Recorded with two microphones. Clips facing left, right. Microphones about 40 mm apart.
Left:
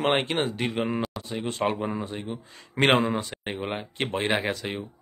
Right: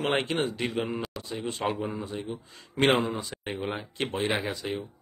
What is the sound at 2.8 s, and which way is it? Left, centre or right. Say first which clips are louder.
Speech: left 3 dB; left.